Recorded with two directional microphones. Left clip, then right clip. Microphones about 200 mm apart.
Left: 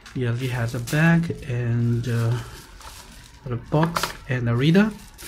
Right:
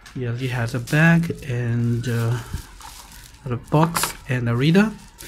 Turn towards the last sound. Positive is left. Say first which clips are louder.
# right 1 dB
turn(degrees=-5)  # may be behind; listen again after turning